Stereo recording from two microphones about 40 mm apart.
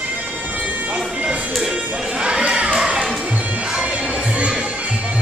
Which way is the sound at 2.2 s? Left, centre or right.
Right.